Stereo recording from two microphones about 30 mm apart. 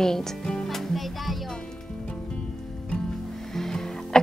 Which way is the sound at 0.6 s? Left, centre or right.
Centre.